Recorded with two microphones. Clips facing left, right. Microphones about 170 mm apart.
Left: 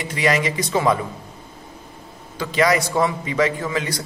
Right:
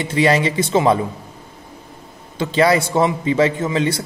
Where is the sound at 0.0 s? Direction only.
30° right (ahead or behind).